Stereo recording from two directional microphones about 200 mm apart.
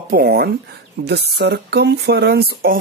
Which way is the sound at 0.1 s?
50° right (ahead or behind).